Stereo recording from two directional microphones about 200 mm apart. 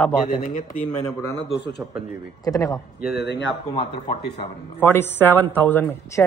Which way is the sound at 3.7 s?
30° left (ahead or behind).